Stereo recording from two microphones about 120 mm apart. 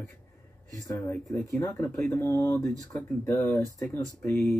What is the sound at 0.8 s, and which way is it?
Speech, 20° left (ahead or behind).